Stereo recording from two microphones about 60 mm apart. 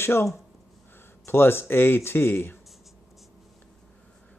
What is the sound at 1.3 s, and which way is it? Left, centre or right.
Speech, left.